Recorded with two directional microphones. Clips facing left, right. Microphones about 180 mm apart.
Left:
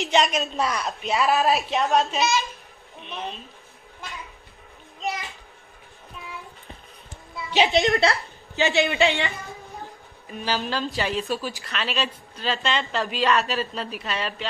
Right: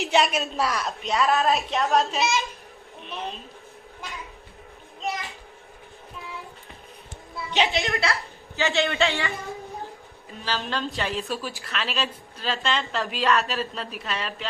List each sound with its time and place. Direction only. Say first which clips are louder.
0.0 s a woman's voice: even; centre (ahead or behind)
5.0 s children playing: left 1 dB; centre (ahead or behind)
7.3 s music: left 4 dB; 20° left (ahead or behind)
7.9 s speech: left 5 dB; 35° left (ahead or behind)
8.5 s a man's voice: left 2 dB; 15° left (ahead or behind)
10.6 s a woman's voice: left 2 dB; centre (ahead or behind)